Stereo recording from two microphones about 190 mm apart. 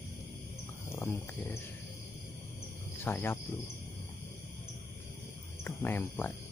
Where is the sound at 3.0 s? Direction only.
10° left (ahead or behind).